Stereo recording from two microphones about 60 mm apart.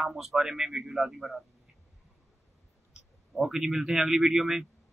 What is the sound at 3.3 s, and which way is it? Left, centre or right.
A man's voice, centre.